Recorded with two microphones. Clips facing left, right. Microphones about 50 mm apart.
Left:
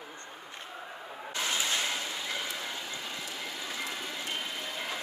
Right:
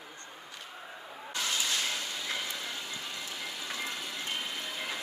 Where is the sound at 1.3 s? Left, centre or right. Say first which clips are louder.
Left 1 dB; left; by 3.4 s centre.